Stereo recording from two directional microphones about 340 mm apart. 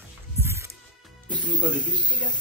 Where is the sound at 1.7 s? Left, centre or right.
Centre.